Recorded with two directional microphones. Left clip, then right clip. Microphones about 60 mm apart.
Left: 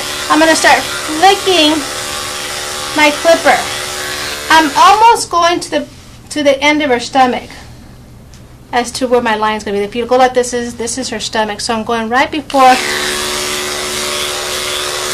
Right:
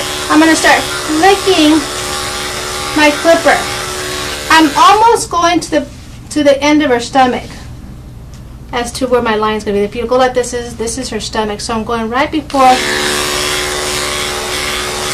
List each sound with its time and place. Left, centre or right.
0.0 s electric shaver: centre
0.7 s speech: centre
1.2 s electric shaver: centre
4.6 s speech: centre
8.7 s a woman's voice: left
12.7 s a sound: centre